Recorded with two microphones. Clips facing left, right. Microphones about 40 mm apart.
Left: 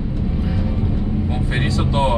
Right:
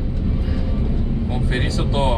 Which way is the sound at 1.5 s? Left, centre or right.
Centre.